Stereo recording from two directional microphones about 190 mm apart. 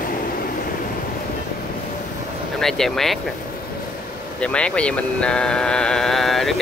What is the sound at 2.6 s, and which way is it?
Speech, centre (ahead or behind).